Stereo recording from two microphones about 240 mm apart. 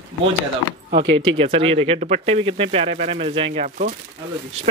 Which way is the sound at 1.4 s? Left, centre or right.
Right.